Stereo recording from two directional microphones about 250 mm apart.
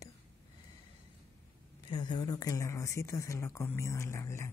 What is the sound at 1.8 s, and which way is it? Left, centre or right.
Speech, centre.